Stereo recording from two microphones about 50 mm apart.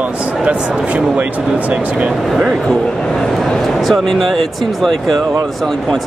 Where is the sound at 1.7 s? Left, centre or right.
Right.